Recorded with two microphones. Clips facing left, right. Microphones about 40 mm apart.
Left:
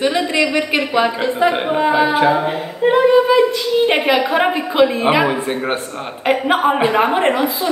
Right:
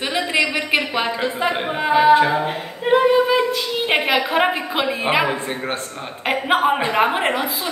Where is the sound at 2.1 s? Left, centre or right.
Centre.